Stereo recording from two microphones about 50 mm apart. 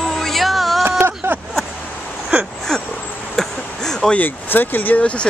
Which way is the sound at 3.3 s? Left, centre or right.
Centre.